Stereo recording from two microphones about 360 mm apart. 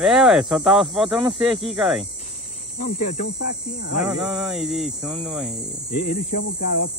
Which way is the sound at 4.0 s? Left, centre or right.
Centre.